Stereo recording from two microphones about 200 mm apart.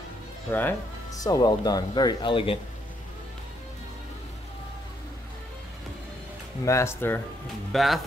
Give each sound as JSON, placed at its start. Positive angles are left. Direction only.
{"t": 0.5, "sound": "speech", "side_deg": 10}
{"t": 6.6, "sound": "speech", "side_deg": 15}
{"t": 7.7, "sound": "speech", "side_deg": 0}